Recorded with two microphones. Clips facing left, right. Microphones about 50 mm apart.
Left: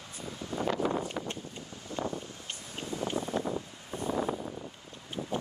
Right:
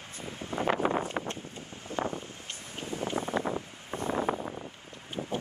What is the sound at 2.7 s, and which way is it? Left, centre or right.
Wind, right.